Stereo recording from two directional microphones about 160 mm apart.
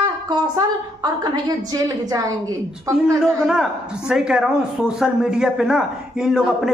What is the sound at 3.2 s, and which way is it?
A man's voice, 5° right (ahead or behind).